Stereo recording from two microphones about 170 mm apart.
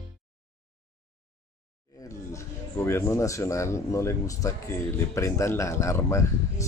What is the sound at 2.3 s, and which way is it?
Speech, 15° left (ahead or behind).